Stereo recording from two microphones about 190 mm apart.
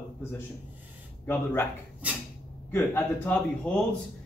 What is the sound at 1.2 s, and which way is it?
Speech, 15° left (ahead or behind).